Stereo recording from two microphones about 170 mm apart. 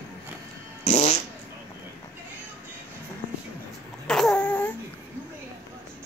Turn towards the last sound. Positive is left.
turn(degrees=10)  # may be behind; listen again after turning